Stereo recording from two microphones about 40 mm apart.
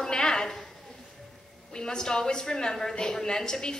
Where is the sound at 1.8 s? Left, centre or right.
Centre.